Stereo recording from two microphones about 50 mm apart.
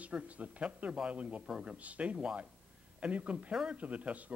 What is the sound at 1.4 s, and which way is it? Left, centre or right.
Speech, centre.